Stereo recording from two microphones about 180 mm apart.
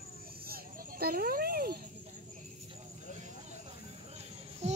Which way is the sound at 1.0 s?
55° right (ahead or behind).